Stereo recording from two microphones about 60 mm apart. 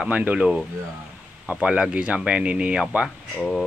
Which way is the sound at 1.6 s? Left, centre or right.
Centre.